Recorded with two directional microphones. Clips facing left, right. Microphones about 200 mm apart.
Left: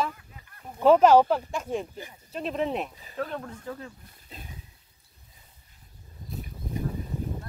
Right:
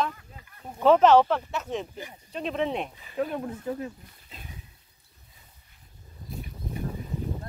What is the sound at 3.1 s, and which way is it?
Speech, 15° right (ahead or behind).